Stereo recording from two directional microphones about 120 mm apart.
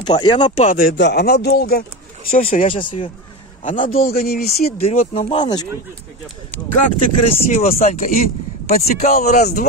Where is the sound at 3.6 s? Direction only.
90° left.